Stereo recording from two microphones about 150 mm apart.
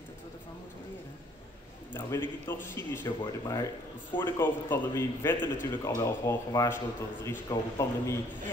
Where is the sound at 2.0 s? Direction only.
15° left (ahead or behind).